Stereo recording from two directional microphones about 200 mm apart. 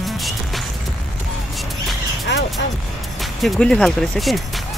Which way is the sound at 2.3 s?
60° left (ahead or behind).